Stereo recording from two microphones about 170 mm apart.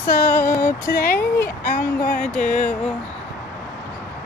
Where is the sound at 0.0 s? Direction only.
50° left (ahead or behind).